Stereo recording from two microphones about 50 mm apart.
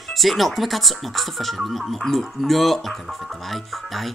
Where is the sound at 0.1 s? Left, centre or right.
Centre.